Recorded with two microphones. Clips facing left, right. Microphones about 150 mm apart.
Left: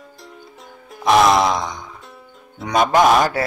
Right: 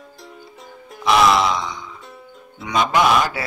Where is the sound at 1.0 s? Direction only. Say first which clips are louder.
Left 2 dB; 45° left (ahead or behind).